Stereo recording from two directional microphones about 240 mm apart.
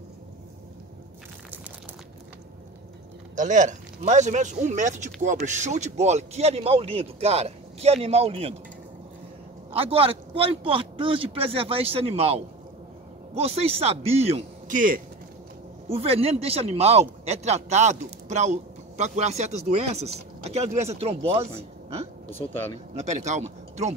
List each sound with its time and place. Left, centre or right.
3.3 s speech: right
9.7 s speech: right
22.3 s speech: centre
22.9 s speech: right